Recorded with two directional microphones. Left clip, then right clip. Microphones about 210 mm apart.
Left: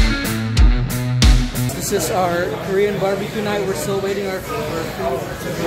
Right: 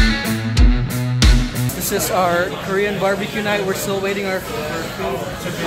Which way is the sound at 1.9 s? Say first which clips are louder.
Right 1 dB; centre (ahead or behind).